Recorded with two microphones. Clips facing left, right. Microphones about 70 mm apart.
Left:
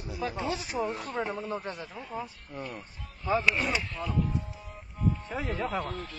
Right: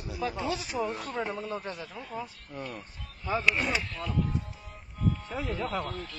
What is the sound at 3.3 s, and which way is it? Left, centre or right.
Speech, centre.